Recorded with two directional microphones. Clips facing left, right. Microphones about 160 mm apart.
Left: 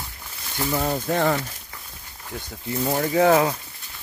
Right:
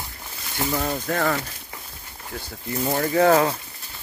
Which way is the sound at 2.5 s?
5° left (ahead or behind).